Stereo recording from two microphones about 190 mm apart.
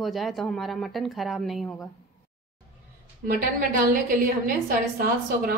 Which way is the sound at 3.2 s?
50° right (ahead or behind).